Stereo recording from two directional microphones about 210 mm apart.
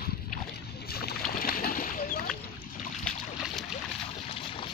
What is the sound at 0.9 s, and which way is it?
Boat, 45° left (ahead or behind).